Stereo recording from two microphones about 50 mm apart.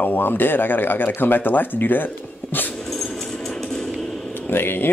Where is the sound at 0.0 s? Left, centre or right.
Left.